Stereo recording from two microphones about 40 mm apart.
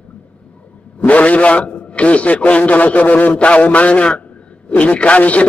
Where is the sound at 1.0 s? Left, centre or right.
Left.